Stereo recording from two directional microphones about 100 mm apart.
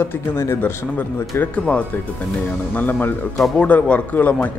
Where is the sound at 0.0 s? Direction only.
20° left (ahead or behind).